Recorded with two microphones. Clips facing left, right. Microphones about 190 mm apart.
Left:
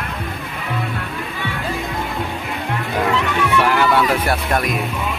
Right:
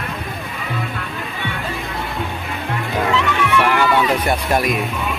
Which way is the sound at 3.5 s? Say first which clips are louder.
Even; 10° left (ahead or behind).